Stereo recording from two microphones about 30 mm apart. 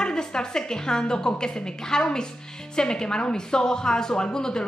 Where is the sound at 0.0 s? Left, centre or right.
Left.